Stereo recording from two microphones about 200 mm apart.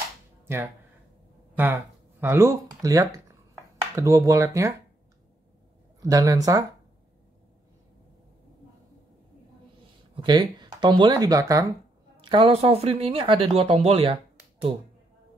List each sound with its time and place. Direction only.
1.6 s speech: 10° right (ahead or behind)
5.9 s speech: 15° right (ahead or behind)
10.1 s speech: 20° right (ahead or behind)